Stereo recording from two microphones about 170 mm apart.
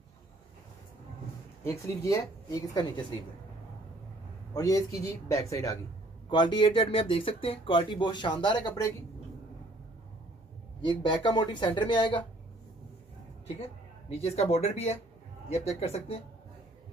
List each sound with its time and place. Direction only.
1.6 s speech: 15° left (ahead or behind)
4.6 s speech: 20° left (ahead or behind)
10.8 s speech: 30° left (ahead or behind)
13.6 s speech: 35° left (ahead or behind)